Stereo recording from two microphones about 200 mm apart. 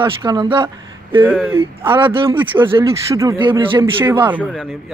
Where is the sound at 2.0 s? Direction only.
25° right (ahead or behind).